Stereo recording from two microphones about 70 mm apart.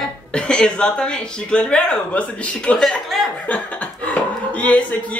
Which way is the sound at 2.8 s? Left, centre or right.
Centre.